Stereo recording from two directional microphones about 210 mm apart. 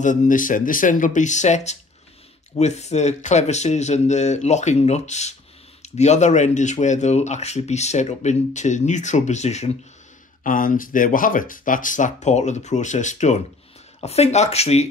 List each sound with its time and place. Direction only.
0.0 s speech: 35° left (ahead or behind)